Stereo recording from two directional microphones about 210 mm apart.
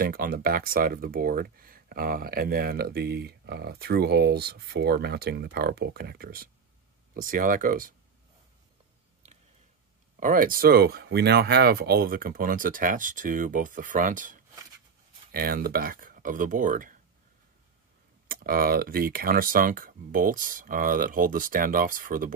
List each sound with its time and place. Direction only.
0.0 s speech: 45° right (ahead or behind)
10.2 s speech: 40° right (ahead or behind)
18.3 s speech: 45° right (ahead or behind)